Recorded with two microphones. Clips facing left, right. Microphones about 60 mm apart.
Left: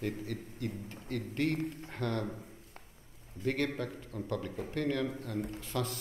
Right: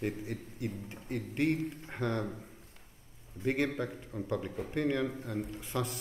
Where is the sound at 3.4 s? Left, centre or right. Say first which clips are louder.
Right 2 dB; centre.